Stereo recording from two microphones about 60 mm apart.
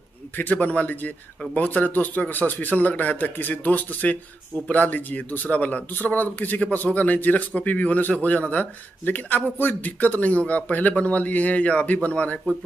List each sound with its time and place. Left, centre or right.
0.4 s a man's voice: left